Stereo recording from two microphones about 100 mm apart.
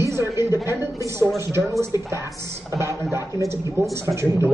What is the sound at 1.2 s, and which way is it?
Speech, 25° right (ahead or behind).